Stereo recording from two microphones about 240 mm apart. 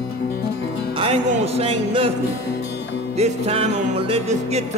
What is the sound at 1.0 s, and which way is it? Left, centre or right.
Music, right.